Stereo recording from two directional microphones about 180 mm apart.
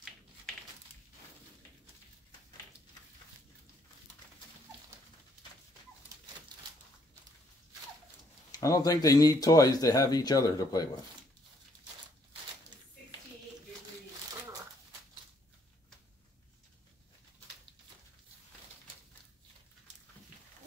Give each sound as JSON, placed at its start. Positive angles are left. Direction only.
{"t": 8.5, "sound": "speech", "side_deg": 20}
{"t": 14.5, "sound": "shuffling cards", "side_deg": -15}